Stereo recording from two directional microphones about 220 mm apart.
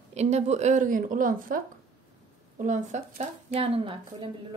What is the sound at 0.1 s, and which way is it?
Speech, 30° right (ahead or behind).